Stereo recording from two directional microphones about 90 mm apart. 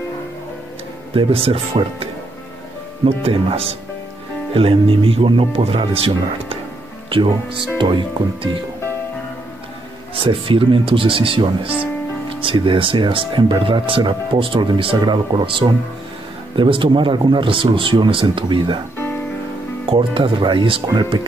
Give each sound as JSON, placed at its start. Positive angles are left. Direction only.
{"t": 1.1, "sound": "speech", "side_deg": -90}
{"t": 3.2, "sound": "speech", "side_deg": -90}
{"t": 7.1, "sound": "speech", "side_deg": -75}
{"t": 10.1, "sound": "speech", "side_deg": -75}
{"t": 12.4, "sound": "speech", "side_deg": -75}
{"t": 19.9, "sound": "speech", "side_deg": -75}